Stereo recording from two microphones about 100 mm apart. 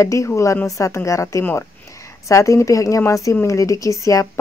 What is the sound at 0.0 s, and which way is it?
Speech, 30° left (ahead or behind).